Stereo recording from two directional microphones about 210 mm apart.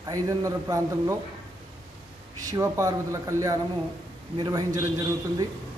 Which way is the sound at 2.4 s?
15° right (ahead or behind).